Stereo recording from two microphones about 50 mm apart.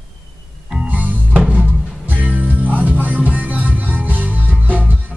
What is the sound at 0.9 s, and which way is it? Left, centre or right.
Music, right.